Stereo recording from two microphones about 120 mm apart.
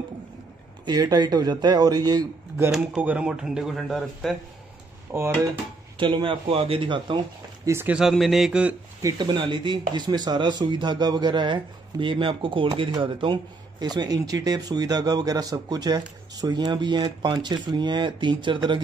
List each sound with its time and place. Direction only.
0.8 s speech: 35° right (ahead or behind)
2.7 s speech: centre (ahead or behind)
5.1 s speech: 20° right (ahead or behind)
5.9 s speech: 45° right (ahead or behind)
7.6 s speech: 20° right (ahead or behind)
7.9 s speech: centre (ahead or behind)
9.0 s speech: 40° right (ahead or behind)